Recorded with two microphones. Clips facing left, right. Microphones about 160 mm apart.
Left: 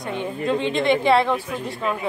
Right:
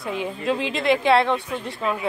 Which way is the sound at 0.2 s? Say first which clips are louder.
Left 3 dB; 5° right (ahead or behind).